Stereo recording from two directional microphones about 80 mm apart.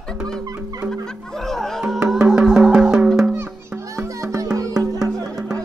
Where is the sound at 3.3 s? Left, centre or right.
Right.